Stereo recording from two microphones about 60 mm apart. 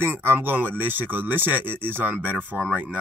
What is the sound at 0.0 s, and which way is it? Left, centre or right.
Speech, right.